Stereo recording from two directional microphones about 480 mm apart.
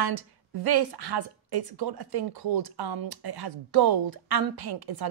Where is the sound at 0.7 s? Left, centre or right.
Right.